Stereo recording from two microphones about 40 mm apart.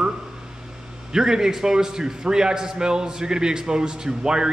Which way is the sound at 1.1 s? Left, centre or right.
Centre.